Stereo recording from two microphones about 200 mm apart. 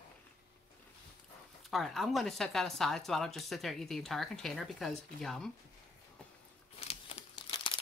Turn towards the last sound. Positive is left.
turn(degrees=25)  # may be behind; listen again after turning